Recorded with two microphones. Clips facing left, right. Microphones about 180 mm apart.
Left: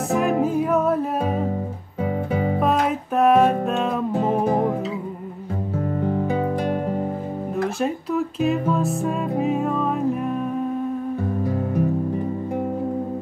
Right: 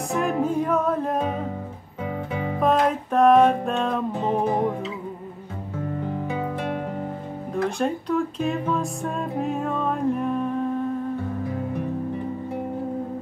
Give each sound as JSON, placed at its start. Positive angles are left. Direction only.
{"t": 0.1, "sound": "music", "side_deg": 5}
{"t": 2.3, "sound": "music", "side_deg": 35}
{"t": 2.6, "sound": "music", "side_deg": 5}
{"t": 5.8, "sound": "music", "side_deg": 35}
{"t": 7.5, "sound": "music", "side_deg": 5}